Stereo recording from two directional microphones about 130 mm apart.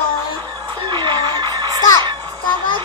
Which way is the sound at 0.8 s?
35° right (ahead or behind).